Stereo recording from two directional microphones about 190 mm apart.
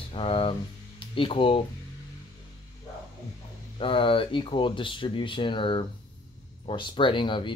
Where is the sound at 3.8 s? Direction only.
30° left (ahead or behind).